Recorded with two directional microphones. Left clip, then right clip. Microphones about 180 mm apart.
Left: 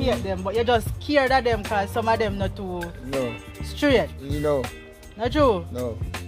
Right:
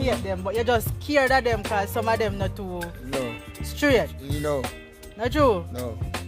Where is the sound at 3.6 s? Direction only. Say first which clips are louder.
Left 1 dB; 45° right (ahead or behind).